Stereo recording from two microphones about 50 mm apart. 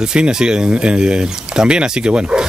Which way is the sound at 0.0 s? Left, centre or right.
Centre.